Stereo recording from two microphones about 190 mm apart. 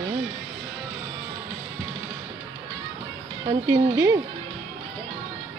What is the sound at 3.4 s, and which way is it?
Speech, 20° right (ahead or behind).